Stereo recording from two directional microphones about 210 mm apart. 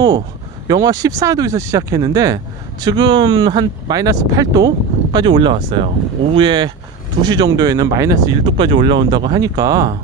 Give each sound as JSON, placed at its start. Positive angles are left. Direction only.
{"t": 0.7, "sound": "speech", "side_deg": -15}